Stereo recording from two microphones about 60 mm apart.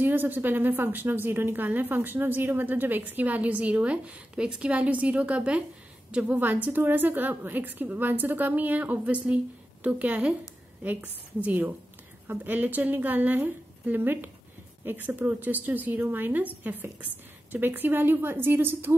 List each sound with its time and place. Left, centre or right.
0.0 s a woman's voice: right